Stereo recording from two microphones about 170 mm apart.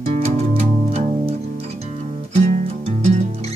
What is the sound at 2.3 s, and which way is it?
Music, 40° right (ahead or behind).